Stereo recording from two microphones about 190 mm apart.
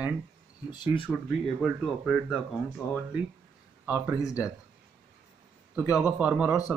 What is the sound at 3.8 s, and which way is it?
Speech, 10° right (ahead or behind).